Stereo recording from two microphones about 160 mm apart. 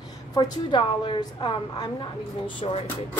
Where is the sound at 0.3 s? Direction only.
25° left (ahead or behind).